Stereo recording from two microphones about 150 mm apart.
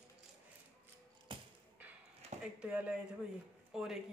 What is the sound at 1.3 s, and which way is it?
Music, 35° right (ahead or behind).